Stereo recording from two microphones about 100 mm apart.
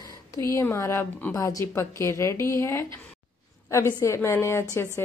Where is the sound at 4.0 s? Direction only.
25° left (ahead or behind).